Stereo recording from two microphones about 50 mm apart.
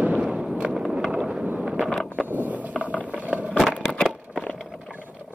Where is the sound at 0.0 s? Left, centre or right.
Right.